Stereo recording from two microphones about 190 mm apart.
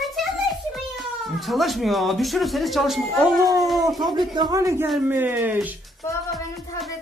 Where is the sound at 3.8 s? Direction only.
20° right (ahead or behind).